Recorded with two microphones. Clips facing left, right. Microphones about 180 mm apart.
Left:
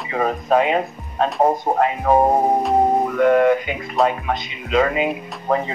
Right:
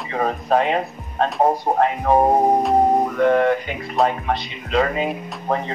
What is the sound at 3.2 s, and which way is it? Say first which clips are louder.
Mantra: left 3 dB; 5° left (ahead or behind).